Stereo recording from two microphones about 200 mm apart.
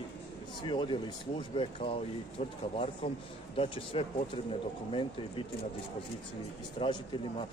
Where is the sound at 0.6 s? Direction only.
25° left (ahead or behind).